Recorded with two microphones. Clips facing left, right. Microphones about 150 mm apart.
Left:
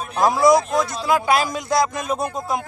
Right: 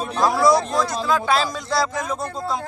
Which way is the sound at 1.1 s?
15° left (ahead or behind).